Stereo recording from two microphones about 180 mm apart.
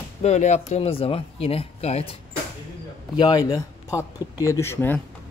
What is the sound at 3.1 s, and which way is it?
Speech, 25° left (ahead or behind).